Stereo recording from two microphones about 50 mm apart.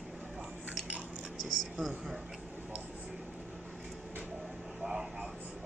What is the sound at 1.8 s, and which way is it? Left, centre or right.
Speech, centre.